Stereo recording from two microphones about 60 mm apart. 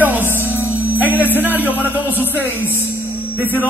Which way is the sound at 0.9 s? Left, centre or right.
Right.